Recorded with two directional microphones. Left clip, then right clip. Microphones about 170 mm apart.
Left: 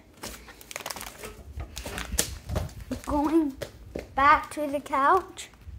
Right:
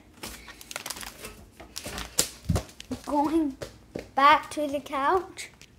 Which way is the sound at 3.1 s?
15° left (ahead or behind).